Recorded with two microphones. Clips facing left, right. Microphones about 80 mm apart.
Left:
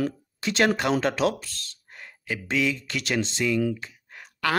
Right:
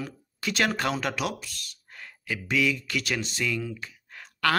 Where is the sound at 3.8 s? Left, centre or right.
Left.